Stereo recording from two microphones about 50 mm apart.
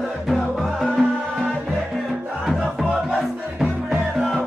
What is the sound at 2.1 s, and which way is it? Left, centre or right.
Music, right.